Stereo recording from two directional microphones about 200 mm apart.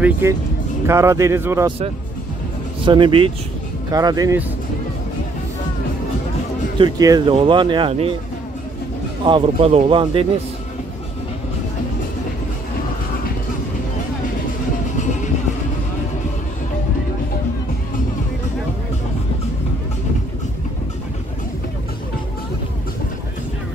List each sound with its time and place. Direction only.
0.0 s a man's voice: 15° right (ahead or behind)
2.8 s speech: 25° right (ahead or behind)
6.8 s speech: 20° right (ahead or behind)
9.2 s speech: 25° right (ahead or behind)